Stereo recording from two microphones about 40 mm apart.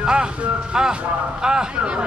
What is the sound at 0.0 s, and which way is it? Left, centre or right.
Speech, right.